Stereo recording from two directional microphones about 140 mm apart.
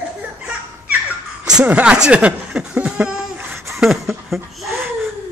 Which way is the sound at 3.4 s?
15° right (ahead or behind).